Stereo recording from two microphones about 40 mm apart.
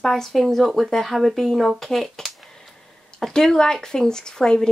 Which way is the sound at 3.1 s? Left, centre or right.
Centre.